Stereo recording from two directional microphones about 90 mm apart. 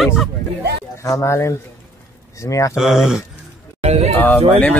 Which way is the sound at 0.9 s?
35° left (ahead or behind).